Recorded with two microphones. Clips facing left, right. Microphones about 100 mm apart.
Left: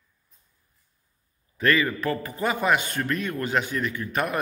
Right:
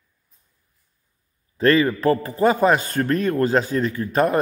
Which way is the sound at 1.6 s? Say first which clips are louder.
Right 6 dB; 30° right (ahead or behind).